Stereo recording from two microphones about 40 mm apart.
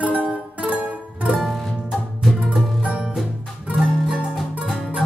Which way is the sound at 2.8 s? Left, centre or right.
Right.